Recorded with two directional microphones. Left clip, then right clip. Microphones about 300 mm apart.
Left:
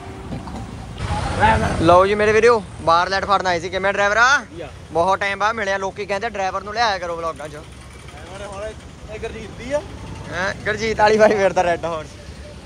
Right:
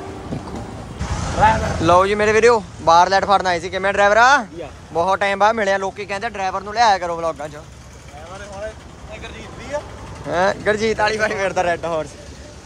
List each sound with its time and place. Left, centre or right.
0.3 s speech: centre
1.8 s speech: centre
9.2 s vehicle: left
10.3 s speech: centre
11.1 s speech: centre